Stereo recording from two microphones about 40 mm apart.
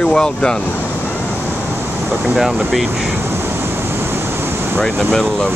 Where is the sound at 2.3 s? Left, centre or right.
Centre.